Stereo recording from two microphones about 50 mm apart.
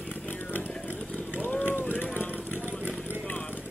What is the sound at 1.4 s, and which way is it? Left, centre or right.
Run, left.